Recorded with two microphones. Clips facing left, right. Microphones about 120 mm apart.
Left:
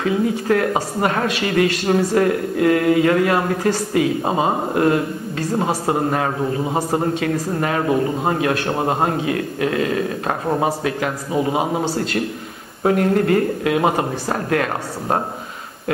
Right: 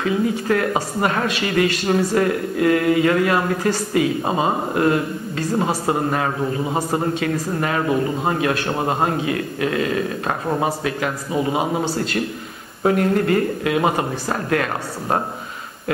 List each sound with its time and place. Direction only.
0.0 s a man's voice: 35° left (ahead or behind)
7.2 s speech: 35° left (ahead or behind)
7.9 s a man's voice: 25° left (ahead or behind)
8.4 s speech: 40° left (ahead or behind)
8.6 s a man's voice: 25° left (ahead or behind)
9.3 s a man's voice: 40° left (ahead or behind)
12.8 s speech: 35° left (ahead or behind)